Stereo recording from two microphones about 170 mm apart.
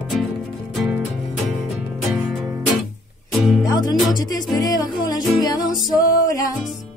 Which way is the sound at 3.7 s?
25° left (ahead or behind).